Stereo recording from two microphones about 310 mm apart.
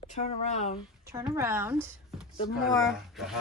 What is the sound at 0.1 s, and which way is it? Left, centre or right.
Speech, left.